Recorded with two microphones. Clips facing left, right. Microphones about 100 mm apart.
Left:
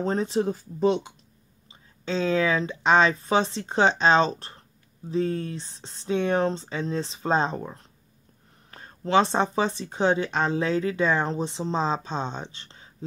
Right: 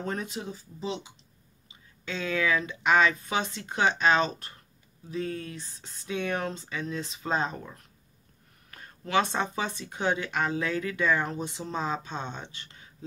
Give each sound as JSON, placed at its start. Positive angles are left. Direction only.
{"t": 0.0, "sound": "speech", "side_deg": 30}
{"t": 0.4, "sound": "speech", "side_deg": 50}
{"t": 1.7, "sound": "speech", "side_deg": 30}